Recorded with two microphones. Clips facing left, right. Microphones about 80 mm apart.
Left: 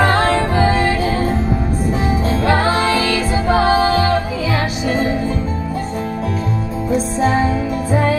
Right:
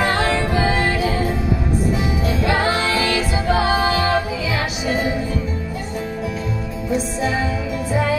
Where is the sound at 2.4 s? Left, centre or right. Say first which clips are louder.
Left 4 dB; left.